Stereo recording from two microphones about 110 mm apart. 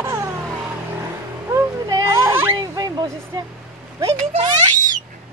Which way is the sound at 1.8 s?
40° right (ahead or behind).